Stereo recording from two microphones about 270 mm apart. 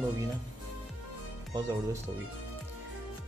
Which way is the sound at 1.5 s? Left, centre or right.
Centre.